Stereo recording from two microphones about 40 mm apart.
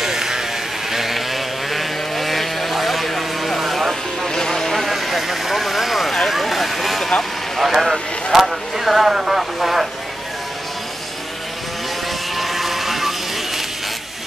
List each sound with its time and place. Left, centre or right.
0.0 s music: centre
0.9 s sheep: centre
4.3 s a sound: centre
4.9 s vehicle: centre
7.5 s a sound: centre
12.4 s vehicle: centre